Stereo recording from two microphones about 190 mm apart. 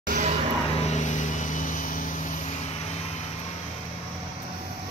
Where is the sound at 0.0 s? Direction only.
45° right (ahead or behind).